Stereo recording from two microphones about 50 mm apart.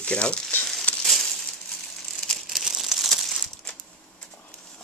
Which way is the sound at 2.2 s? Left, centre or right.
Centre.